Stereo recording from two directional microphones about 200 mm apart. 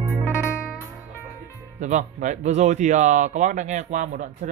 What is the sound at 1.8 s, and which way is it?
Speech, 35° right (ahead or behind).